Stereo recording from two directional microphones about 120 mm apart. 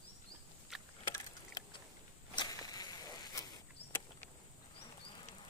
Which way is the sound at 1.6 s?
30° left (ahead or behind).